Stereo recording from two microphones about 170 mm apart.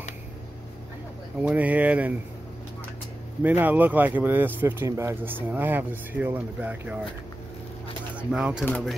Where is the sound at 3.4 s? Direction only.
10° right (ahead or behind).